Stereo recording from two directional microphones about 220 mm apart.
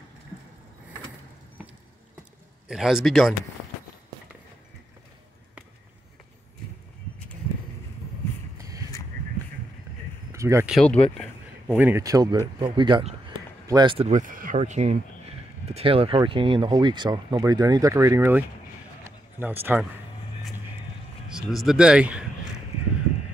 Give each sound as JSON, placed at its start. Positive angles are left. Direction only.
{"t": 2.7, "sound": "speech", "side_deg": 0}
{"t": 8.5, "sound": "a sound", "side_deg": -15}
{"t": 10.3, "sound": "a sound", "side_deg": -15}
{"t": 10.7, "sound": "speech", "side_deg": 5}
{"t": 19.4, "sound": "speech", "side_deg": -10}
{"t": 21.4, "sound": "speech", "side_deg": 0}